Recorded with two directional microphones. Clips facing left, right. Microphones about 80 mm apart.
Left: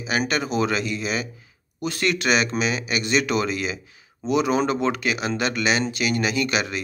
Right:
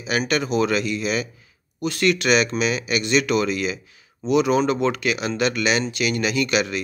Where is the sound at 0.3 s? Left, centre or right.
Left.